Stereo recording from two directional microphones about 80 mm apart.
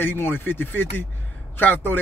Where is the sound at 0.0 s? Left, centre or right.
Left.